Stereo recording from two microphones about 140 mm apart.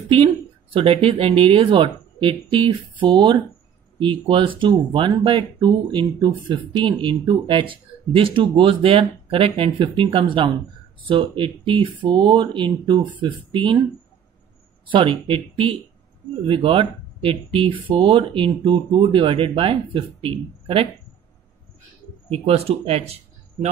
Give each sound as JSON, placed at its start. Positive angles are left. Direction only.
{"t": 0.7, "sound": "speech", "side_deg": -40}
{"t": 14.9, "sound": "speech", "side_deg": -35}
{"t": 22.3, "sound": "speech", "side_deg": -45}